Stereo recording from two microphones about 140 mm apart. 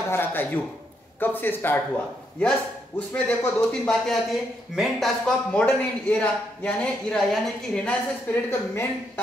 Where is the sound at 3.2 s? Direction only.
5° left (ahead or behind).